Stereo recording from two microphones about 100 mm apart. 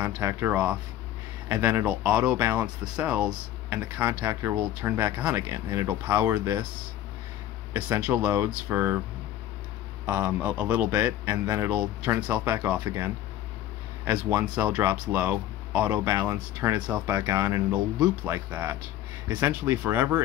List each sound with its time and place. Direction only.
0.2 s speech: 25° right (ahead or behind)
7.7 s speech: 20° right (ahead or behind)
10.0 s speech: 15° right (ahead or behind)
17.3 s speech: 30° right (ahead or behind)